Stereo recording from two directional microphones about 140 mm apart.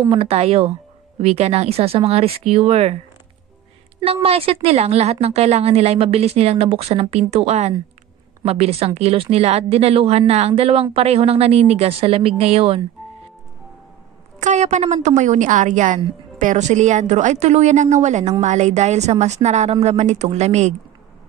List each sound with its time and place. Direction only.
0.1 s speech: 45° right (ahead or behind)
4.0 s speech: 45° right (ahead or behind)
14.4 s a woman's voice: 55° right (ahead or behind)